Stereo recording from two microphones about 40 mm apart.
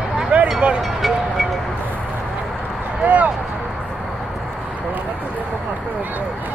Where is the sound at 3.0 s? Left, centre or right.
Right.